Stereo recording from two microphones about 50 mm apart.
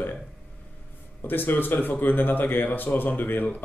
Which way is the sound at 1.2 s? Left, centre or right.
Left.